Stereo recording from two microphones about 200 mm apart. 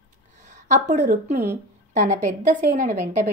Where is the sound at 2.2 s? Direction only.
40° right (ahead or behind).